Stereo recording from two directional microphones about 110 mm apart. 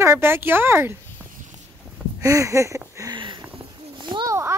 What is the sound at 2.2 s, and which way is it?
Speech, 30° right (ahead or behind).